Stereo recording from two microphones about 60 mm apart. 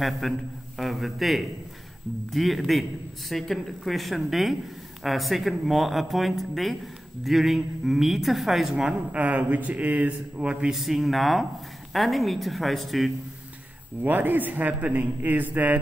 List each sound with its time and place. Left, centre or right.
0.2 s a man's voice: centre
9.2 s a man's voice: right
10.8 s speech: centre
14.0 s a man's voice: right